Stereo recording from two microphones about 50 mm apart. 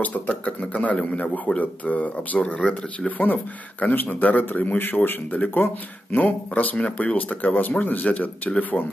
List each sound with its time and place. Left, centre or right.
0.0 s speech: left
3.1 s speech: left